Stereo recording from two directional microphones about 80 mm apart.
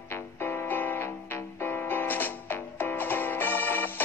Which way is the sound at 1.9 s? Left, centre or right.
Left.